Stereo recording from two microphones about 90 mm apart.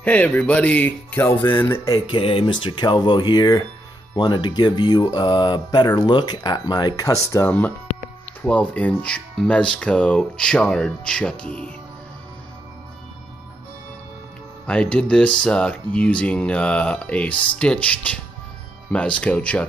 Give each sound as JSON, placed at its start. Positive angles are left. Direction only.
{"t": 0.0, "sound": "speech", "side_deg": 15}
{"t": 2.0, "sound": "speech", "side_deg": 75}
{"t": 7.1, "sound": "speech", "side_deg": 35}
{"t": 7.4, "sound": "speech", "side_deg": 20}
{"t": 14.7, "sound": "speech", "side_deg": 10}